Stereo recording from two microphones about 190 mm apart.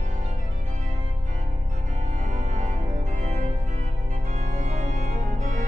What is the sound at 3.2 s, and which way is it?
Organ, 35° right (ahead or behind).